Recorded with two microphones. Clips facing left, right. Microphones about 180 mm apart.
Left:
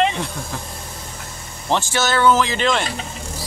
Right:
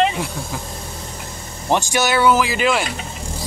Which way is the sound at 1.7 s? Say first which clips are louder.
Right 2 dB; 15° right (ahead or behind).